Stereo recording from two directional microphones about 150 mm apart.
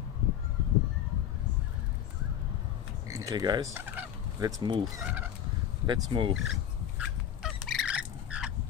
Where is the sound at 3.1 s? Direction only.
20° right (ahead or behind).